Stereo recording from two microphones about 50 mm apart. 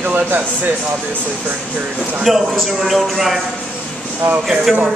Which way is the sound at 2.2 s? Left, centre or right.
Centre.